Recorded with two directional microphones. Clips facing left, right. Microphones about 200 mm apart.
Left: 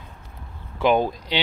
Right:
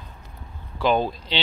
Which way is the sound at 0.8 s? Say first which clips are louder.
Left 2 dB; 15° left (ahead or behind).